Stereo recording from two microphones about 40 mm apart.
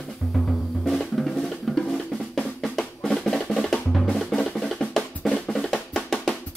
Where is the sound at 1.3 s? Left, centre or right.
Centre.